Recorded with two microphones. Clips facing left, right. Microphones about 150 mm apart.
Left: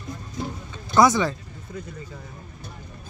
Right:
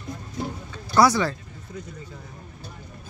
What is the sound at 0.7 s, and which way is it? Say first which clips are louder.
Speech: left 1 dB; 20° left (ahead or behind).